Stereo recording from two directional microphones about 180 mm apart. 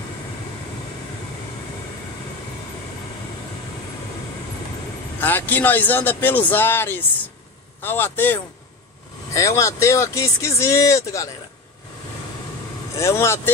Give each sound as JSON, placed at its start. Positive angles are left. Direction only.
{"t": 5.2, "sound": "speech", "side_deg": 10}
{"t": 12.9, "sound": "speech", "side_deg": 15}